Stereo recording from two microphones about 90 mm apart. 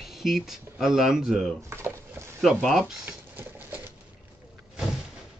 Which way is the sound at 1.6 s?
30° right (ahead or behind).